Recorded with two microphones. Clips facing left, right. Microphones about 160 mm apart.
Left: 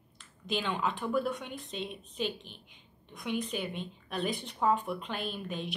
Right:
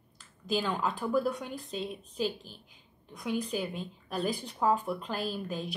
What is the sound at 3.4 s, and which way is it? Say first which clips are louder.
Speech: right 2 dB; centre (ahead or behind).